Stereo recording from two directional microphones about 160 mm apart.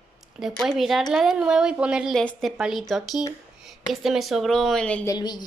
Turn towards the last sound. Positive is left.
turn(degrees=25)  # may be behind; listen again after turning